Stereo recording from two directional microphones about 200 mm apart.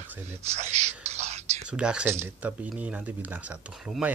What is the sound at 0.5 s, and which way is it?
Speech, 35° right (ahead or behind).